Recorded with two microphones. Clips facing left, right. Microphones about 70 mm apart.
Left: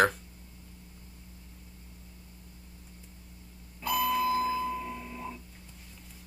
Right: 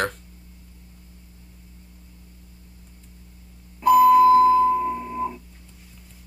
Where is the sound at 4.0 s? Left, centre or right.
Centre.